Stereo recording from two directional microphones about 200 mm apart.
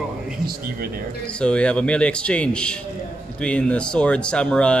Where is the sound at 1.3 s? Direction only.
5° left (ahead or behind).